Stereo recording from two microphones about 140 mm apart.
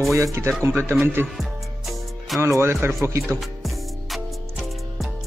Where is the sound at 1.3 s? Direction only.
Centre (ahead or behind).